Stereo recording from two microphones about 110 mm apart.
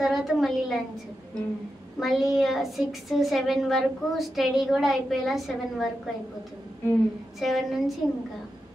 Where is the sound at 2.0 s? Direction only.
Centre (ahead or behind).